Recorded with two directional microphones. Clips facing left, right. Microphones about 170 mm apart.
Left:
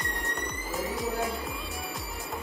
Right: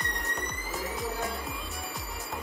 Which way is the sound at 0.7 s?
Centre (ahead or behind).